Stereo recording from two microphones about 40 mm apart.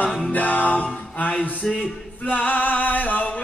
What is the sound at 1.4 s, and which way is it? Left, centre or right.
Speech, left.